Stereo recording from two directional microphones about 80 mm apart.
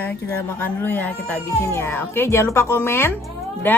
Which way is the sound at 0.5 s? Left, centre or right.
Left.